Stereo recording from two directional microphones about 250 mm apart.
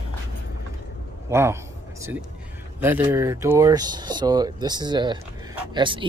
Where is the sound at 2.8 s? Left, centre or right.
Centre.